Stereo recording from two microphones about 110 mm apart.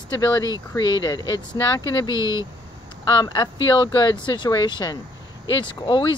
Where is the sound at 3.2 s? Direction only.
40° left (ahead or behind).